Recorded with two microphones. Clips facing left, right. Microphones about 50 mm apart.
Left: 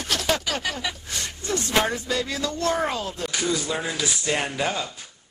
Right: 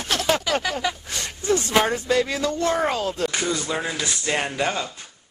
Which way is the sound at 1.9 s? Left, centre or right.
Right.